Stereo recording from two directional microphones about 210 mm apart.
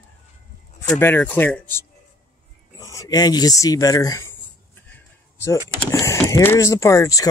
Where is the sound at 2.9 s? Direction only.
15° left (ahead or behind).